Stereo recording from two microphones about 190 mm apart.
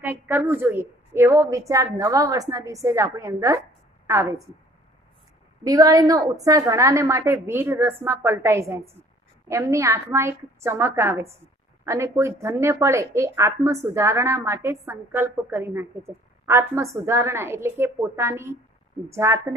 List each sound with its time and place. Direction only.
0.0 s a woman's voice: 10° right (ahead or behind)
5.6 s a woman's voice: 20° right (ahead or behind)